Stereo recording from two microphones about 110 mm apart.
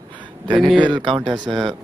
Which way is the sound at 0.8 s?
45° right (ahead or behind).